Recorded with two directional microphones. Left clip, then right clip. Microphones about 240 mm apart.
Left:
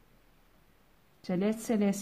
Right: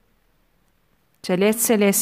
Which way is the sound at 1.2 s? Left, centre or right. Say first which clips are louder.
Right 13 dB; right.